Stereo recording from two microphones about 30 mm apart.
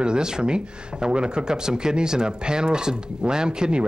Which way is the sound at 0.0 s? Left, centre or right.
Right.